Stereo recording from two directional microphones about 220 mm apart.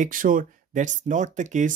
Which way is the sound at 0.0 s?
40° right (ahead or behind).